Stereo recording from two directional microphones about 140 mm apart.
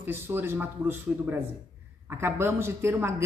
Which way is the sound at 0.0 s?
15° right (ahead or behind).